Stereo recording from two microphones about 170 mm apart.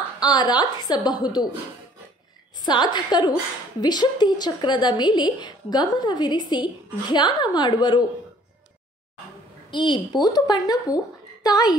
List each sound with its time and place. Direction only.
0.2 s a woman's voice: 25° left (ahead or behind)
2.6 s a woman's voice: 25° left (ahead or behind)
9.7 s a woman's voice: 25° left (ahead or behind)